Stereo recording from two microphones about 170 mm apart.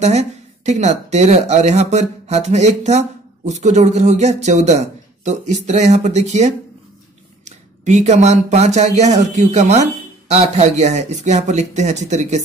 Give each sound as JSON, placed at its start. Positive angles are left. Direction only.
{"t": 0.0, "sound": "speech", "side_deg": -40}